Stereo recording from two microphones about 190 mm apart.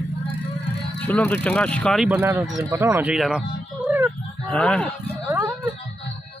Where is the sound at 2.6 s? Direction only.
15° right (ahead or behind).